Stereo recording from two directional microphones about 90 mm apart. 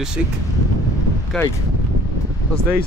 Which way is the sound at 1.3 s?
5° left (ahead or behind).